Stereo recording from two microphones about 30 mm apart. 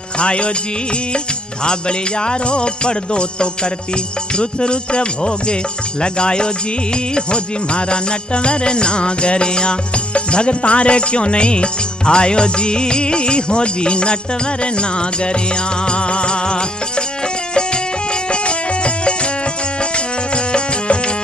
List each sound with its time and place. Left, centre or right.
0.2 s music: left
18.3 s music: left
20.3 s music: left